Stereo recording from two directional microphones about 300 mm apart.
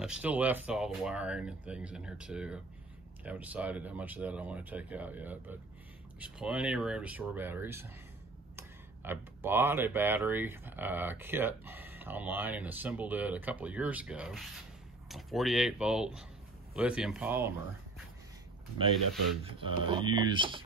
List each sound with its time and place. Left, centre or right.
0.0 s speech: centre
19.9 s speech: centre